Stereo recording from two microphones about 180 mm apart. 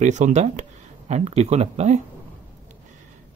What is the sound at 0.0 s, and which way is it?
Speech, 40° right (ahead or behind).